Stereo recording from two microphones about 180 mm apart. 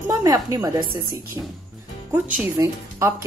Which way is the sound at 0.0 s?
20° right (ahead or behind).